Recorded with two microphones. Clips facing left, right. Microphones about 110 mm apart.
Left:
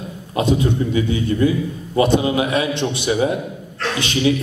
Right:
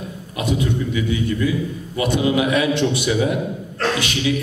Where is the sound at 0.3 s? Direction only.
30° left (ahead or behind).